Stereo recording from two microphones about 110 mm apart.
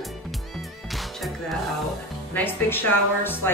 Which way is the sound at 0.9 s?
Centre (ahead or behind).